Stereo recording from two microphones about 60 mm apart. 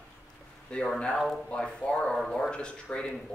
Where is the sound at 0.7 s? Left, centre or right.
Centre.